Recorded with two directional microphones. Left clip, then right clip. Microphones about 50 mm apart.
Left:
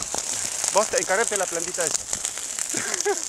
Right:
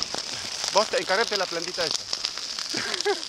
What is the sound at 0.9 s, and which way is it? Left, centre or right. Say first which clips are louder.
Speech: left 1 dB; centre.